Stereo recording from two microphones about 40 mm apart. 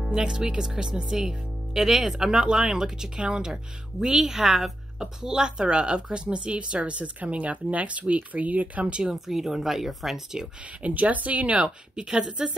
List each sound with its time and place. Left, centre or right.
0.0 s speech: centre
4.9 s speech: centre; by 8.8 s right
9.0 s speech: centre
10.8 s speech: right
11.6 s speech: centre